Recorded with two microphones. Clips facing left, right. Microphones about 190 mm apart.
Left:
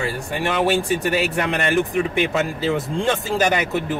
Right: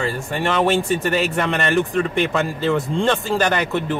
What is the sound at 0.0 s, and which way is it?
Speech, 5° left (ahead or behind).